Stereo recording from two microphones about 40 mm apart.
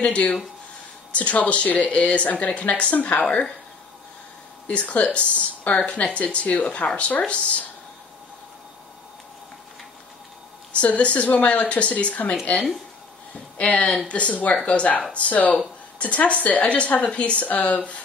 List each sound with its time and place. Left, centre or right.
0.0 s speech: left
4.6 s speech: left
5.7 s speech: left
6.1 s speech: left
10.7 s speech: left
13.6 s speech: left